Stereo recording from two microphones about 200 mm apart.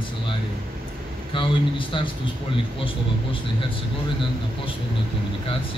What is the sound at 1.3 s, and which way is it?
Speech, 25° left (ahead or behind).